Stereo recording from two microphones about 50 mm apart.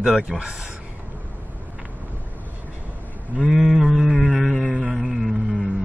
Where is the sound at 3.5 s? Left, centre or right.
Centre.